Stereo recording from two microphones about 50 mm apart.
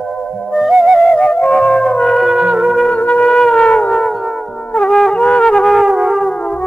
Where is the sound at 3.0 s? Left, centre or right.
Left.